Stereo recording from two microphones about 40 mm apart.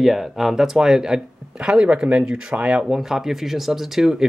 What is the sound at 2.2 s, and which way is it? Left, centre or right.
Speech, centre.